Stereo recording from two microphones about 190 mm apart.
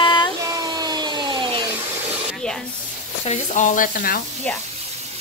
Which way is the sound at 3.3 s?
40° left (ahead or behind).